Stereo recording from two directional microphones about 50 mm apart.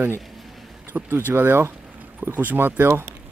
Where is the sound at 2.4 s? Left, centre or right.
Right.